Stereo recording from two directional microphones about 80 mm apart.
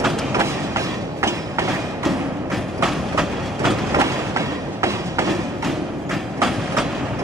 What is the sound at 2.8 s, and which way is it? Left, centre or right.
Train, centre.